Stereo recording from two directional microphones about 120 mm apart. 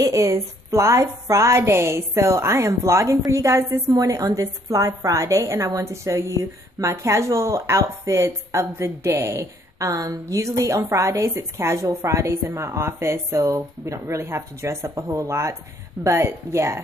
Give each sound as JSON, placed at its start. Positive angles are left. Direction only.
{"t": 0.0, "sound": "a woman's voice", "side_deg": -25}